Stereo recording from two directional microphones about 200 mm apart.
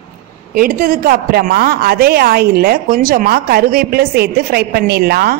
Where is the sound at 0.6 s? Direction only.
45° right (ahead or behind).